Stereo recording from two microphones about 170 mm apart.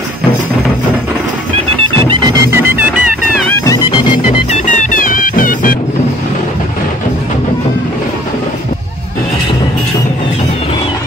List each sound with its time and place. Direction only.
2.5 s music: 10° right (ahead or behind)
4.5 s music: 45° left (ahead or behind)